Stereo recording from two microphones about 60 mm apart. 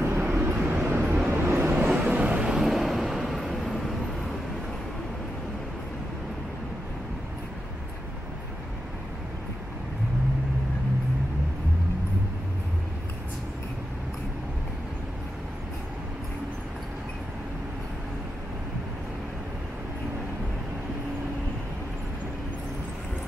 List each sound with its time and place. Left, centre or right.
0.0 s vehicle: right
1.9 s vehicle: centre